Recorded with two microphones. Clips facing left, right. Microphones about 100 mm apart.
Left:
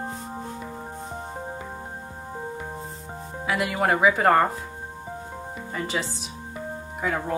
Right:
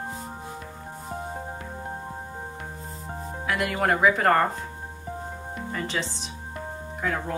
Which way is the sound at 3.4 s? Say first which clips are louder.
Left 1 dB; 5° left (ahead or behind).